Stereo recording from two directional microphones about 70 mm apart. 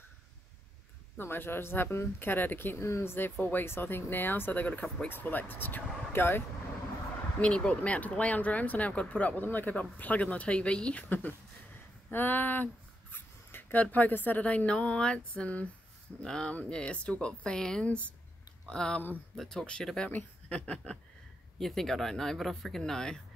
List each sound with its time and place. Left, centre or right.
1.1 s speech: left
7.3 s speech: centre
19.3 s speech: centre
19.6 s speech: centre